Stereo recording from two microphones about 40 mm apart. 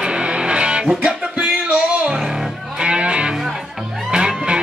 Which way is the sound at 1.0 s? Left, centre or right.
Right.